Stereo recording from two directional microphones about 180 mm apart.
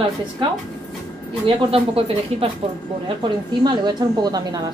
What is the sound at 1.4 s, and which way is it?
A woman's voice, 30° right (ahead or behind).